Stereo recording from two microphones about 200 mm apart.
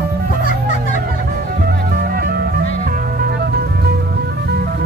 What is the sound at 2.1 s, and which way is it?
Music, 50° right (ahead or behind).